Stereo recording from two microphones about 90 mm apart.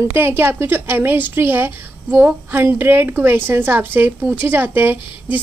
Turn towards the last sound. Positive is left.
turn(degrees=-20)  # may be behind; listen again after turning